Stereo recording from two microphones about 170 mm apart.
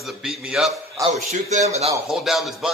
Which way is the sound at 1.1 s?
45° right (ahead or behind).